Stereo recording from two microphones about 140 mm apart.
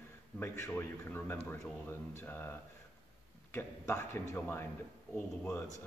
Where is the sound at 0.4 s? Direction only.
15° left (ahead or behind).